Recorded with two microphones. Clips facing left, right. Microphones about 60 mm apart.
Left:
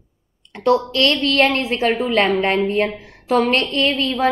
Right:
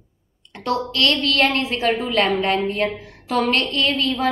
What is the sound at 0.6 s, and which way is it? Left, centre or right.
A woman's voice, left.